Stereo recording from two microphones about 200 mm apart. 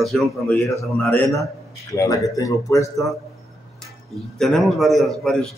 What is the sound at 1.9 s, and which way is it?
A man's voice, 15° left (ahead or behind).